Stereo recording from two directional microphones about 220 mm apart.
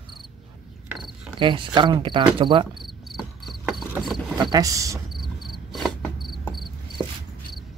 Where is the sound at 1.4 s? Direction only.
20° right (ahead or behind).